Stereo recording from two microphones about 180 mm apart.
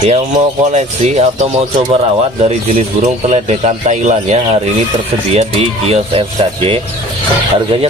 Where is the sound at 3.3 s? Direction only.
35° right (ahead or behind).